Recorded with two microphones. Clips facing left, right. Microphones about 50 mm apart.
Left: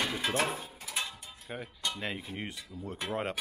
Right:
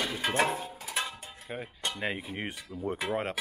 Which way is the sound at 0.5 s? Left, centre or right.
Centre.